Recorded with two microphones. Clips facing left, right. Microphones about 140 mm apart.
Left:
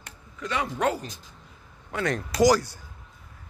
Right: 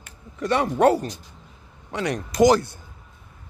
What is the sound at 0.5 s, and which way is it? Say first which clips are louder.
Speech: right 8 dB; 45° right (ahead or behind).